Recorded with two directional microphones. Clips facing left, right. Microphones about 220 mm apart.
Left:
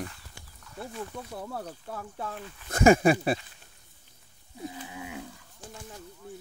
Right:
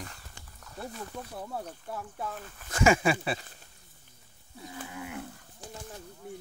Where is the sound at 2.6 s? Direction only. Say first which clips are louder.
Left 5 dB; 40° left (ahead or behind).